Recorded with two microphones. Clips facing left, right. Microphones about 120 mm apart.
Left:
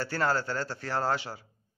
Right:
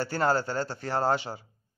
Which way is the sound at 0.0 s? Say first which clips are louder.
Right 3 dB; 20° right (ahead or behind).